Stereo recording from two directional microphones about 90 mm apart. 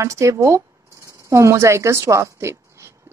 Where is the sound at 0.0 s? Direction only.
35° right (ahead or behind).